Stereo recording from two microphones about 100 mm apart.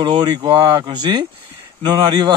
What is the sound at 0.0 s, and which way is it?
A man's voice, 50° right (ahead or behind).